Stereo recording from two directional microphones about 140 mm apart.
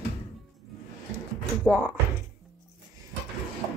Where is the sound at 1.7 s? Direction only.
5° left (ahead or behind).